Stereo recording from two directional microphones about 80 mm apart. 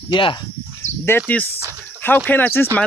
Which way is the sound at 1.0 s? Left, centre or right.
Left.